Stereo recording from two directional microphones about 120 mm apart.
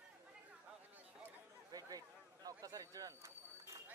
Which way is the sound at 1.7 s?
30° right (ahead or behind).